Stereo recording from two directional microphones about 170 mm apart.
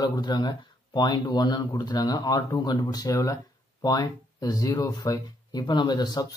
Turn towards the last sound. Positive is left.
turn(degrees=25)  # may be behind; listen again after turning